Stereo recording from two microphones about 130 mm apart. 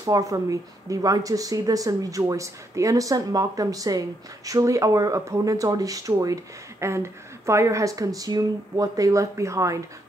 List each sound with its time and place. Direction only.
0.0 s speech: 25° right (ahead or behind)